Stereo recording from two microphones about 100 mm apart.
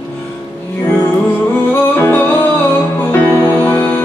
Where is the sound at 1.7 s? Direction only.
20° left (ahead or behind).